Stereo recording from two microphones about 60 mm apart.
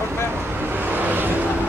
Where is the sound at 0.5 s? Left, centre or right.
Right.